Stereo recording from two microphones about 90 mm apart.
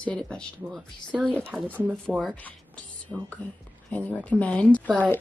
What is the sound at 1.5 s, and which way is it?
Speech, 5° right (ahead or behind).